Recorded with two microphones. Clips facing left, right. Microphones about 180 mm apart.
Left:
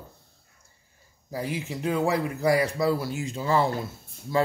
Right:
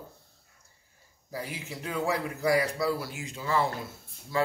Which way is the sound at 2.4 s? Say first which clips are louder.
Left 3 dB; 25° left (ahead or behind).